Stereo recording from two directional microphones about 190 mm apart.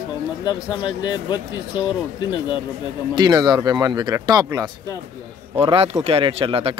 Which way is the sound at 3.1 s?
20° right (ahead or behind).